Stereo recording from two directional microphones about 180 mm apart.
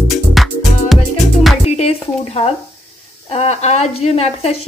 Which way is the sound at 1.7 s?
35° left (ahead or behind).